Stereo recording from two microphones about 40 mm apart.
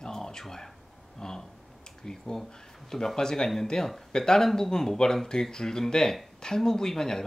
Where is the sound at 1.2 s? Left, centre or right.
Centre.